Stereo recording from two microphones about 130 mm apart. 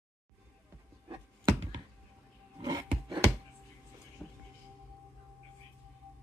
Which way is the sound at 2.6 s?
35° right (ahead or behind).